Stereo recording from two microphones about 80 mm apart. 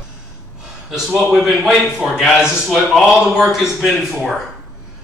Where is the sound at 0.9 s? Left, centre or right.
Centre.